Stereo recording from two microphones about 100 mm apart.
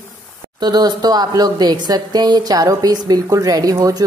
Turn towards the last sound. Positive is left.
turn(degrees=-40)  # may be behind; listen again after turning